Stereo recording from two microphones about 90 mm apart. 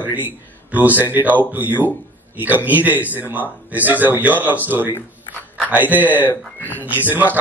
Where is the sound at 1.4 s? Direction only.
20° right (ahead or behind).